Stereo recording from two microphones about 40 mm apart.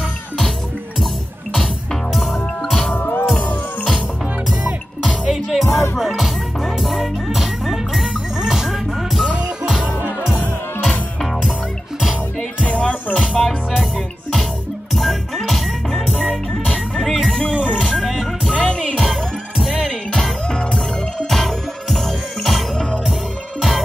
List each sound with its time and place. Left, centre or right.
2.9 s music: left
5.3 s music: centre
12.6 s music: left
15.0 s music: centre
17.0 s music: centre
17.3 s music: left
19.6 s music: centre
20.4 s music: left
21.3 s music: centre